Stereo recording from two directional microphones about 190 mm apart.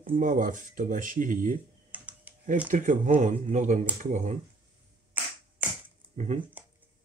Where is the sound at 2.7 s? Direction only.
40° right (ahead or behind).